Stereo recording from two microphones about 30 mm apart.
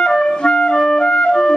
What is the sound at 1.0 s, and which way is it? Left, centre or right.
Flute, left.